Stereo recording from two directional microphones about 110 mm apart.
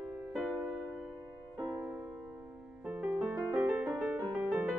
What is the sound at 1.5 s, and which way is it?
Music, 35° right (ahead or behind).